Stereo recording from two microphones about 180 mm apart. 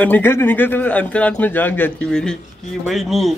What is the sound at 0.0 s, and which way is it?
Speech, 10° left (ahead or behind).